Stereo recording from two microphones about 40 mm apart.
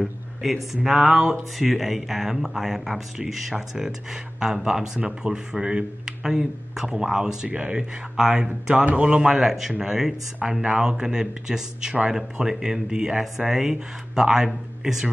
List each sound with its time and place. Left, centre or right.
0.0 s a sound: centre
0.8 s speech: centre
7.4 s speech: right
8.2 s speech: centre
8.7 s a man's voice: right
9.2 s speech: centre